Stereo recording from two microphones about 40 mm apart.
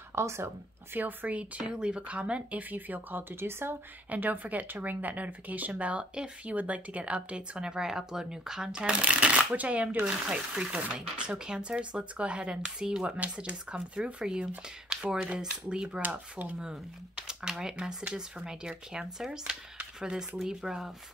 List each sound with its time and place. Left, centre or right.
0.1 s a woman's voice: right
0.9 s speech: right
1.3 s speech: right
2.7 s speech: right
3.3 s speech: right
4.1 s speech: right
10.0 s speech: centre
13.0 s speech: right
17.1 s speech: centre